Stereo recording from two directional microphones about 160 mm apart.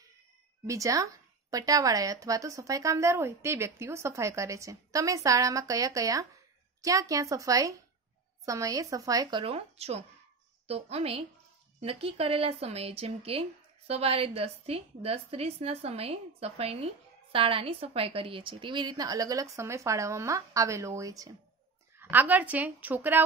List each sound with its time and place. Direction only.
0.7 s a woman's voice: 20° right (ahead or behind)
9.4 s a woman's voice: 40° right (ahead or behind); by 23.2 s 10° right (ahead or behind)